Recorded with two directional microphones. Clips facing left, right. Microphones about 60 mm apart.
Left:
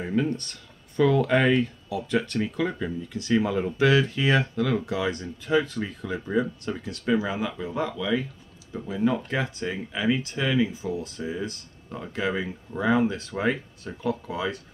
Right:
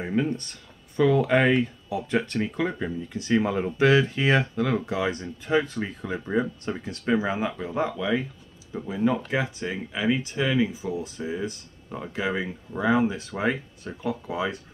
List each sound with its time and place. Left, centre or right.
0.0 s speech: centre
8.7 s speech: centre